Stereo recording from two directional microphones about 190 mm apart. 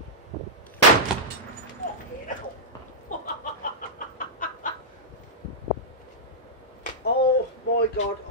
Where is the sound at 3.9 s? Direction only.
45° left (ahead or behind).